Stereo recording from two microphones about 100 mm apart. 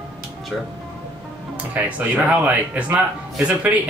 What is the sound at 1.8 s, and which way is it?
Speech, 15° right (ahead or behind).